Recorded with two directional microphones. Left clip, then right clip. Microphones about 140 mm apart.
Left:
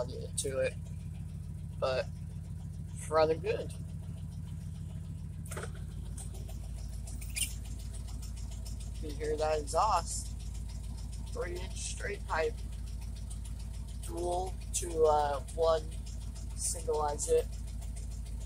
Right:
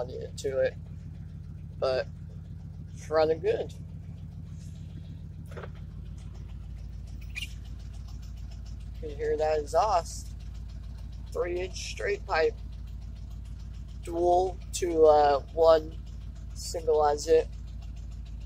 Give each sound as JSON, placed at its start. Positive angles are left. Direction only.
{"t": 0.0, "sound": "speech", "side_deg": 0}
{"t": 1.8, "sound": "speech", "side_deg": -5}
{"t": 3.1, "sound": "speech", "side_deg": -10}
{"t": 9.2, "sound": "speech", "side_deg": -10}
{"t": 11.3, "sound": "speech", "side_deg": -25}
{"t": 14.3, "sound": "speech", "side_deg": -35}